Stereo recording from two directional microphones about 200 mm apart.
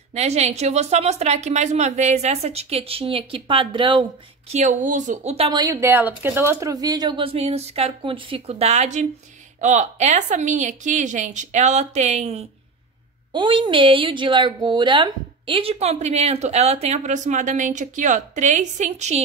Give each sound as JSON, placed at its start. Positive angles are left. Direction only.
{"t": 0.1, "sound": "a woman's voice", "side_deg": -35}
{"t": 5.5, "sound": "a woman's voice", "side_deg": -15}